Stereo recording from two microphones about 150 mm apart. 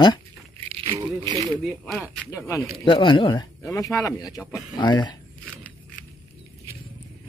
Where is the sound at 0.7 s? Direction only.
35° right (ahead or behind).